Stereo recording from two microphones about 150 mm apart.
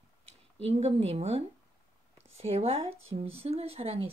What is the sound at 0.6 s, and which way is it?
Speech, 45° right (ahead or behind).